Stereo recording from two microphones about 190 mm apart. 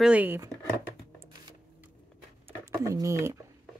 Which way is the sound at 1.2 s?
20° right (ahead or behind).